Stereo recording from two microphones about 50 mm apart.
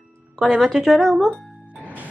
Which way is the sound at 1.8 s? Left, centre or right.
Right.